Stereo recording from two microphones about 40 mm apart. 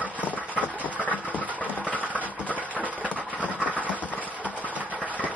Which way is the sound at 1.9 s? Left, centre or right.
Left.